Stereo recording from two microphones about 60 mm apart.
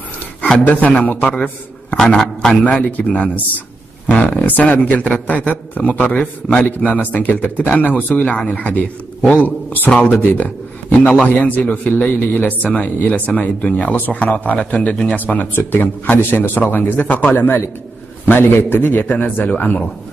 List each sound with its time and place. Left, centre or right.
0.7 s a man's voice: left
2.0 s a man's voice: centre
2.5 s a man's voice: left